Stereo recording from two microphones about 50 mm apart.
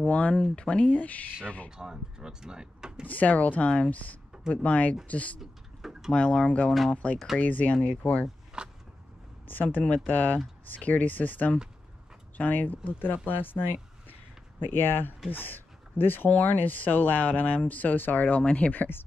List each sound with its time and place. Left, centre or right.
0.0 s speech: left
0.9 s speech: left
1.8 s speech: centre
3.1 s speech: left
5.4 s a sound: centre
6.1 s speech: left
8.6 s a sound: centre
9.5 s speech: left
18.8 s speech: left